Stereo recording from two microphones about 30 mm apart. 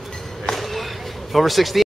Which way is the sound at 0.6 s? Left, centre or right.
Centre.